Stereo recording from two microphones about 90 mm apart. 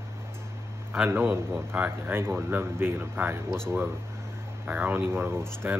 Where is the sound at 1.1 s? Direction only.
20° right (ahead or behind).